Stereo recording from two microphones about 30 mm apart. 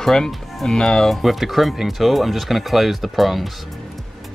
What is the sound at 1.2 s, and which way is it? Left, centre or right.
Speech, centre.